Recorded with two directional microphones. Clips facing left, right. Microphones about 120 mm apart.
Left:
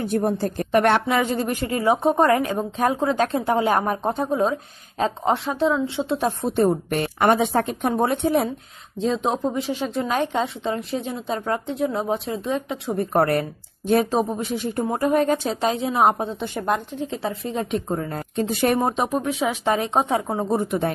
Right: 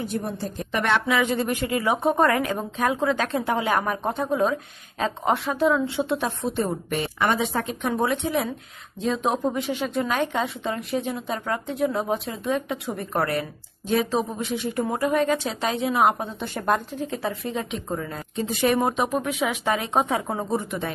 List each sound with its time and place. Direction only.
0.0 s a woman's voice: 55° left (ahead or behind)
1.0 s a woman's voice: 40° left (ahead or behind)
6.2 s a woman's voice: 50° left (ahead or behind)
9.0 s speech: 30° left (ahead or behind)
13.3 s a woman's voice: 50° left (ahead or behind)
15.7 s a woman's voice: 30° left (ahead or behind)
18.1 s a woman's voice: 50° left (ahead or behind)
19.2 s a woman's voice: 30° left (ahead or behind)
20.5 s a woman's voice: 50° left (ahead or behind)